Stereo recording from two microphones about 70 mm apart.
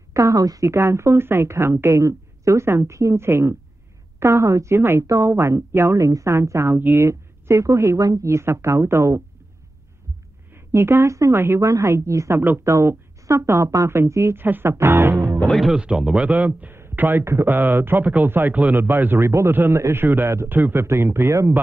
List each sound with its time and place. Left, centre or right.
0.1 s a woman's voice: right
0.7 s speech: right
10.5 s a sound: right
11.3 s speech: right
15.1 s speech: right
15.7 s speech: centre
16.3 s speech: right
16.7 s a sound: right
17.2 s speech: right